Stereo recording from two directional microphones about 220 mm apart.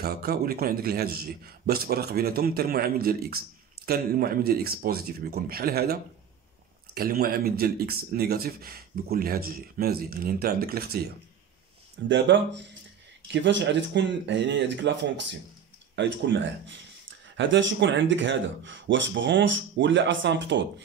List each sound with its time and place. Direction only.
0.0 s a man's voice: 45° right (ahead or behind)
12.1 s speech: 55° right (ahead or behind)